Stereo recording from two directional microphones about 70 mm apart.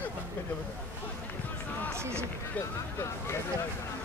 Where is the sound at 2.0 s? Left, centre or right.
Right.